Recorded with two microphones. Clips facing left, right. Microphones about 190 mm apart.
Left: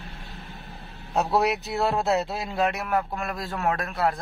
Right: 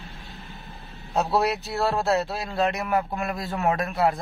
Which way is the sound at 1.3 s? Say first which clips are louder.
Left 1 dB; 15° left (ahead or behind).